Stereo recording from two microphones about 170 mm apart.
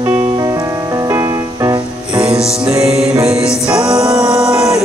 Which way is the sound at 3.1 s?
20° right (ahead or behind).